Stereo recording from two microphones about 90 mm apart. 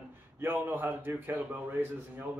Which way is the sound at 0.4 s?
25° right (ahead or behind).